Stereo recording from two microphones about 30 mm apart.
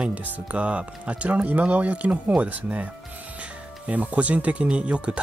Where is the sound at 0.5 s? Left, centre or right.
Right.